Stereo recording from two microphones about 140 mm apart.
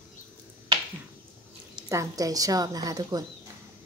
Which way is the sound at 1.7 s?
25° right (ahead or behind).